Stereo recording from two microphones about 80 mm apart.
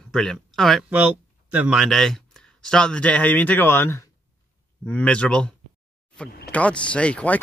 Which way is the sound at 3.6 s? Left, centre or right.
Left.